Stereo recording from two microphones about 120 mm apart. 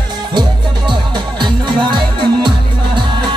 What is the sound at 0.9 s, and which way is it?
Music, 40° right (ahead or behind).